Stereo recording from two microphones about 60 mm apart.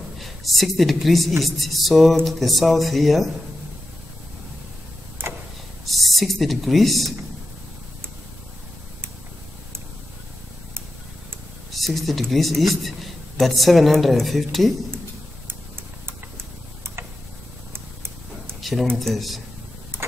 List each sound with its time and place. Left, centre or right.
0.2 s a man's voice: centre
5.2 s vehicle: right
5.9 s speech: centre
11.7 s a man's voice: centre
17.7 s a sound: right
18.6 s a sound: centre
18.9 s a man's voice: centre